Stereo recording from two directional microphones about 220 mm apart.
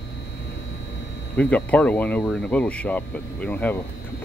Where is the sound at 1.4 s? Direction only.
5° left (ahead or behind).